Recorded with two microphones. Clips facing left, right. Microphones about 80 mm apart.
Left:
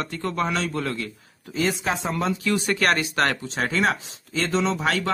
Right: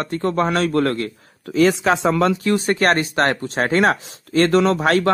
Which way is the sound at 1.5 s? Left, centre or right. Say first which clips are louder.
Right 9 dB; right.